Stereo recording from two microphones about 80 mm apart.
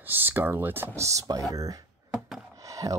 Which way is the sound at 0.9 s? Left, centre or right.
Right.